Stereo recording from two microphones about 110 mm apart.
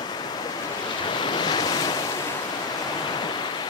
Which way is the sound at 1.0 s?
45° left (ahead or behind).